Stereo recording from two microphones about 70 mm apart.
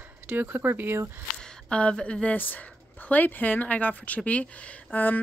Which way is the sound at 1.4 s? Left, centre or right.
Centre.